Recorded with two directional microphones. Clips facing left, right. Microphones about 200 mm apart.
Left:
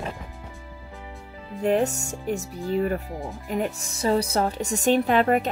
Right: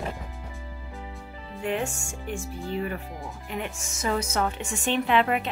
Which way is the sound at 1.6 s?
40° left (ahead or behind).